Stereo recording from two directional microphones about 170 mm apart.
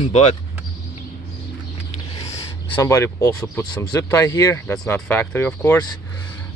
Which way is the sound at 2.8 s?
20° left (ahead or behind).